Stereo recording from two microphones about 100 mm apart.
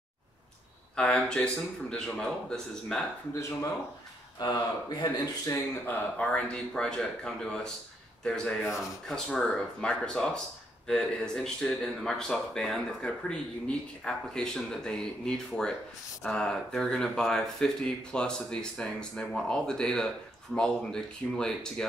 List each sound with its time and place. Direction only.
0.9 s speech: 10° left (ahead or behind)
4.4 s speech: 45° left (ahead or behind)
5.9 s speech: 15° left (ahead or behind)